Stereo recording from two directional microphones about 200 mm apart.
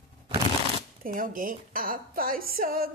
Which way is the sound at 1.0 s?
45° right (ahead or behind).